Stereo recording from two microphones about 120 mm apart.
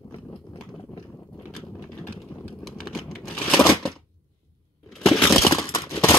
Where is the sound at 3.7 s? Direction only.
Centre (ahead or behind).